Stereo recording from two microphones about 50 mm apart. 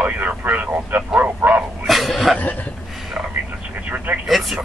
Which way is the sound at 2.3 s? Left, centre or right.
Left.